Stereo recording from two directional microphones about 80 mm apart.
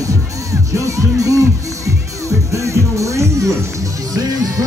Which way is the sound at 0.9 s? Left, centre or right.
Right.